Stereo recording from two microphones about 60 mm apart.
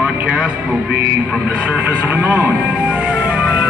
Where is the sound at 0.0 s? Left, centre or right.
Centre.